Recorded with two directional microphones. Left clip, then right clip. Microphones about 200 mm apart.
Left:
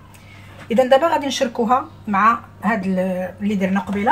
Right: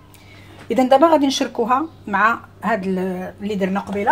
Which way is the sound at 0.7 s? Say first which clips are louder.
Right 1 dB; 40° right (ahead or behind).